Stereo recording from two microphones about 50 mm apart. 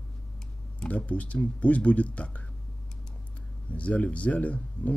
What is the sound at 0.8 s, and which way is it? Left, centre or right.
Speech, left.